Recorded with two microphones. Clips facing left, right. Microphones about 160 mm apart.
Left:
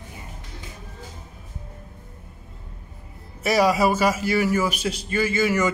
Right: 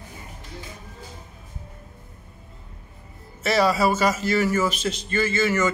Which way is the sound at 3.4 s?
10° left (ahead or behind).